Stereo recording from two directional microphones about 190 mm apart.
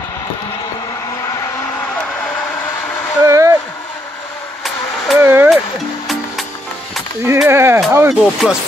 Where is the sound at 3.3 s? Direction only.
15° right (ahead or behind).